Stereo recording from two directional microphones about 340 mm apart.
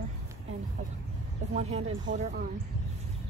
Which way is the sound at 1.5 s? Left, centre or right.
Centre.